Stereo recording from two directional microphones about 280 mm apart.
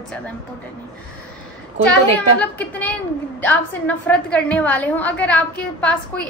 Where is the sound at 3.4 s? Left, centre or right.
Centre.